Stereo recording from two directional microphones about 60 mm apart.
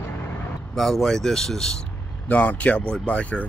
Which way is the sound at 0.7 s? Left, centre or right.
Centre.